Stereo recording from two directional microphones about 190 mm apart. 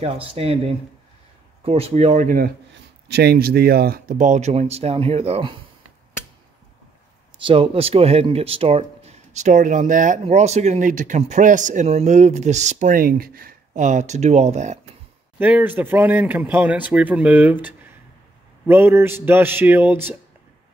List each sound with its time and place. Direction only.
0.0 s speech: 30° right (ahead or behind); by 2.5 s 45° right (ahead or behind)
3.1 s speech: 60° right (ahead or behind); by 5.6 s 30° right (ahead or behind)
7.3 s speech: 25° right (ahead or behind)
15.3 s speech: 10° right (ahead or behind)
18.7 s speech: 10° right (ahead or behind)